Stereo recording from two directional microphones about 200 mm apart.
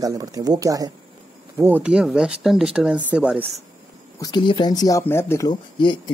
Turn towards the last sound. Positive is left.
turn(degrees=20)  # may be behind; listen again after turning